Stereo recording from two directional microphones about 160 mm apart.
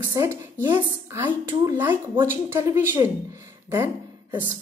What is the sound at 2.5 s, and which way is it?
A woman's voice, 15° right (ahead or behind).